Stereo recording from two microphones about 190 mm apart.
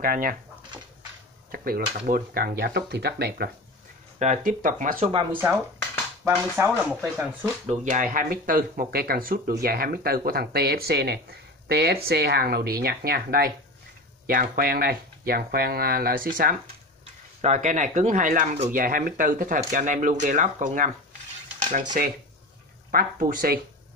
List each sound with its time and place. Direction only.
0.0 s speech: 50° right (ahead or behind)
1.5 s speech: 50° right (ahead or behind)
4.5 s speech: 45° right (ahead or behind)
5.3 s speech: 10° right (ahead or behind)
7.8 s speech: 45° right (ahead or behind)
22.0 s speech: 50° right (ahead or behind)